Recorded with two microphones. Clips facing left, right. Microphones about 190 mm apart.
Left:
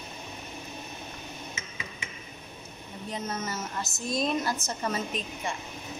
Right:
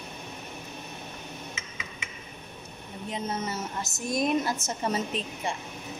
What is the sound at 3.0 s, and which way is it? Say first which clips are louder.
A woman's voice: right 2 dB; 30° right (ahead or behind).